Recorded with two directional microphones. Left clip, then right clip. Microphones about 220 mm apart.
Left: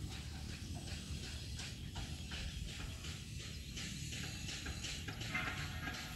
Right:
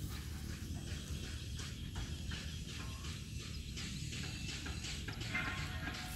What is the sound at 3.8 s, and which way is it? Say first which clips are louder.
Music: even; 40° left (ahead or behind).